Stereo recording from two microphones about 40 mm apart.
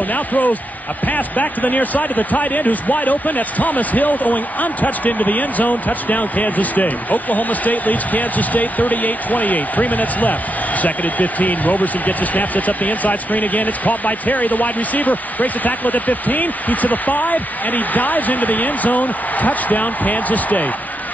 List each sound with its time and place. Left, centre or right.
0.1 s speech: left